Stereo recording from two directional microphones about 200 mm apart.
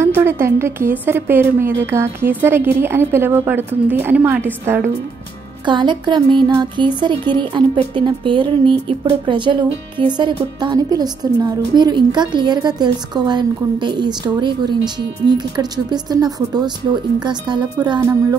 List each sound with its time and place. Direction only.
0.0 s a woman's voice: 10° right (ahead or behind)
5.7 s speech: 25° right (ahead or behind)